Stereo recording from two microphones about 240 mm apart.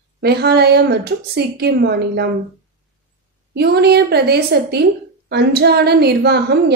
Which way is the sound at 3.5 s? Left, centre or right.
Right.